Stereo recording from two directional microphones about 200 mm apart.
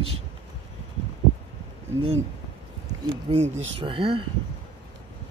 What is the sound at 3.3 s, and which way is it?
Speech, 25° right (ahead or behind).